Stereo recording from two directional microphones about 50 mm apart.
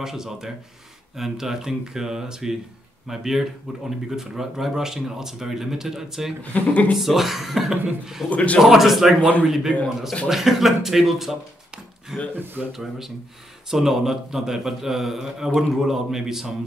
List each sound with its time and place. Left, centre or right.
0.0 s a man's voice: centre
6.5 s speech: left
7.0 s speech: centre
8.3 s speech: left
8.5 s a man's voice: centre